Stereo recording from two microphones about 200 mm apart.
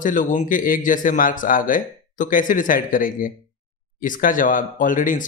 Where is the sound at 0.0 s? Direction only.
40° left (ahead or behind).